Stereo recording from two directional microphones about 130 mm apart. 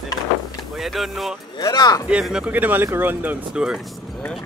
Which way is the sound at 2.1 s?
5° right (ahead or behind).